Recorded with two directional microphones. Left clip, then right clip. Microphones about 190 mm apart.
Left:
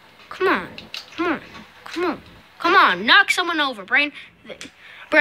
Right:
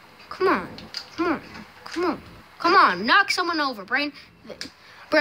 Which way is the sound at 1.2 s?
Centre (ahead or behind).